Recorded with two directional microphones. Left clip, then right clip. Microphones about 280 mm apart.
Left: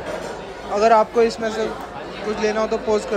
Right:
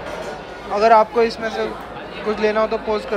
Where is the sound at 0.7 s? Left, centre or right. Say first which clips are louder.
Right 2 dB; centre.